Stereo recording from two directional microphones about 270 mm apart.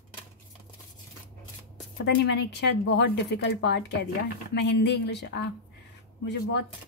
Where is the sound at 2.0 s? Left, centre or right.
Left.